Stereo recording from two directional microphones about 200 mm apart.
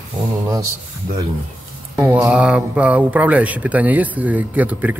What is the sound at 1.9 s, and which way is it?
Speech, 10° right (ahead or behind).